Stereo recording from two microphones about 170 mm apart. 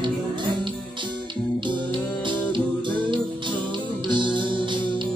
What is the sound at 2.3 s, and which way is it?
Music, 30° right (ahead or behind).